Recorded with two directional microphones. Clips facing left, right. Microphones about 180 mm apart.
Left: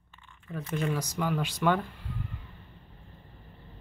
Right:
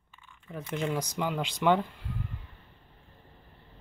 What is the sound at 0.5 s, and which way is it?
Speech, 15° right (ahead or behind).